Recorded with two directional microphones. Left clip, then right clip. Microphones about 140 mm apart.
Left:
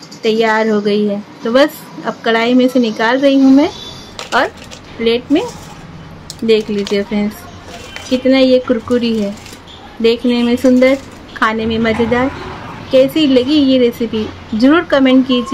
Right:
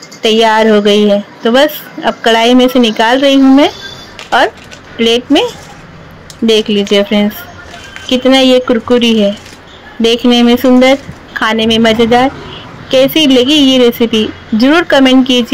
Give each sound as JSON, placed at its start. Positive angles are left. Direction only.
{"t": 0.2, "sound": "a woman's voice", "side_deg": -20}
{"t": 5.0, "sound": "a woman's voice", "side_deg": -15}